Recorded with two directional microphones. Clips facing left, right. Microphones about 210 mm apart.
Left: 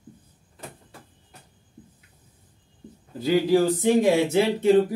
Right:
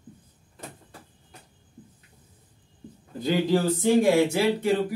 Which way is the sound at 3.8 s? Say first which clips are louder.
Left 1 dB; 20° left (ahead or behind).